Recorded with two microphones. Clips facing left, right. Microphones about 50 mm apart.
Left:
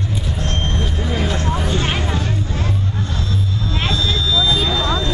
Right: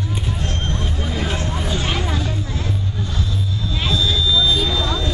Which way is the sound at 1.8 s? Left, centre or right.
Left.